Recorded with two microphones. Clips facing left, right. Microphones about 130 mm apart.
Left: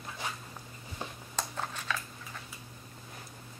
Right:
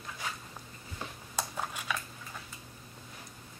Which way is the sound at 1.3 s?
10° right (ahead or behind).